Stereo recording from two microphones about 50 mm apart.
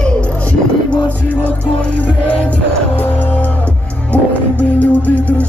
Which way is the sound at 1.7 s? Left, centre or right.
Left.